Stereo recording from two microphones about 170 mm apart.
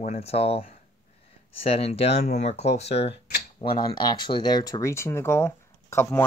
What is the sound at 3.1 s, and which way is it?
Speech, 65° left (ahead or behind).